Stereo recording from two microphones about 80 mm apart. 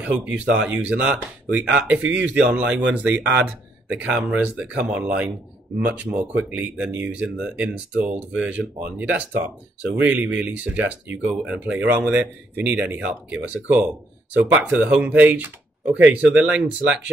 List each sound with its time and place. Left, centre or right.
0.0 s speech: centre